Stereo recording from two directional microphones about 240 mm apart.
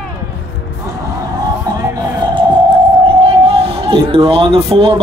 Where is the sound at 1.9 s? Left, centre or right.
Centre.